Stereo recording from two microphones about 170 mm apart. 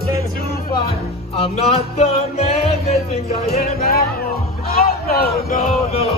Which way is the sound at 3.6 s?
60° left (ahead or behind).